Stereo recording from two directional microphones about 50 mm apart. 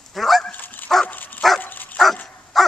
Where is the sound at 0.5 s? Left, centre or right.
Left.